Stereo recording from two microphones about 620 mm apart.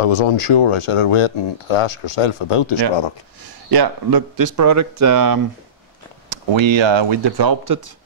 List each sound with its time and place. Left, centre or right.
0.0 s speech: left
3.7 s speech: right
6.2 s speech: right